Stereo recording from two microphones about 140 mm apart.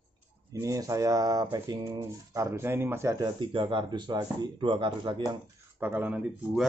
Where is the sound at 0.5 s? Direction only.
25° right (ahead or behind).